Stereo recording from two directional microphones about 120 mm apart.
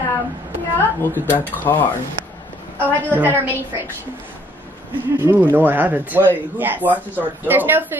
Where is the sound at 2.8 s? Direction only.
15° right (ahead or behind).